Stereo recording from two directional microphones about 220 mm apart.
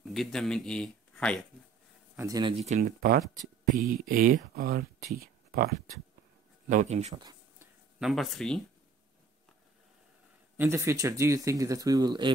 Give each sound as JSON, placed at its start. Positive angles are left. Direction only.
{"t": 0.1, "sound": "speech", "side_deg": 0}
{"t": 2.1, "sound": "speech", "side_deg": -15}
{"t": 6.7, "sound": "speech", "side_deg": -30}
{"t": 8.0, "sound": "speech", "side_deg": 0}
{"t": 10.6, "sound": "speech", "side_deg": -10}